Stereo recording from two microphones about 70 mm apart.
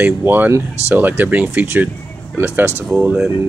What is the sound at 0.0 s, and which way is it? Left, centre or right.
Speech, right.